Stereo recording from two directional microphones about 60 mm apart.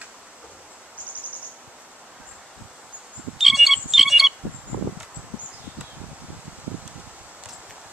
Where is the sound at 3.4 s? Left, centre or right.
Centre.